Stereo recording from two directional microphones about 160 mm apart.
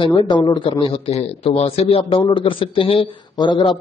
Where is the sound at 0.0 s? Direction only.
30° left (ahead or behind).